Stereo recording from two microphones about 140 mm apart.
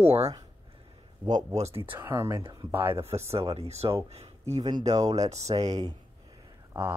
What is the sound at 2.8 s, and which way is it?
Speech, 45° right (ahead or behind).